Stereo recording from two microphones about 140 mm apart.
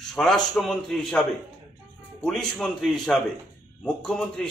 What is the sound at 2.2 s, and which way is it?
A man's voice, 5° left (ahead or behind).